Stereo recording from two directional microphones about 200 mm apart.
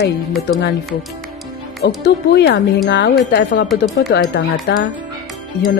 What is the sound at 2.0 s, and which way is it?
Speech, 55° left (ahead or behind).